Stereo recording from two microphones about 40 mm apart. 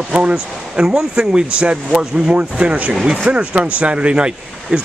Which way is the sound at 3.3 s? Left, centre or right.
Right.